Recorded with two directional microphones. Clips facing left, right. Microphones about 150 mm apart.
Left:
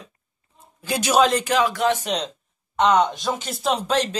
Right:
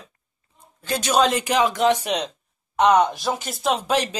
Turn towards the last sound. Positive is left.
turn(degrees=0)  # may be behind; listen again after turning